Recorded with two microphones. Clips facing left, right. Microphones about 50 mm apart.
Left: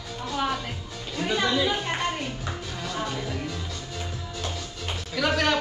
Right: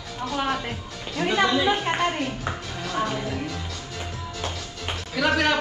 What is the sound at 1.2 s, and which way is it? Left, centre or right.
A woman's voice, centre.